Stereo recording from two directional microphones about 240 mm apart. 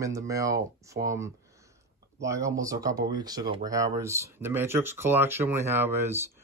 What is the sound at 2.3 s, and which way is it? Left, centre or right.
Speech, centre.